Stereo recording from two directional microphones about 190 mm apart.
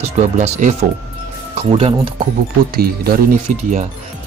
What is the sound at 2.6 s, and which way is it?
Speech, 55° right (ahead or behind).